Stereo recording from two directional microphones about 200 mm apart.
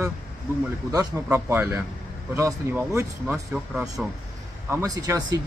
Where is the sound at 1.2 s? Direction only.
10° right (ahead or behind).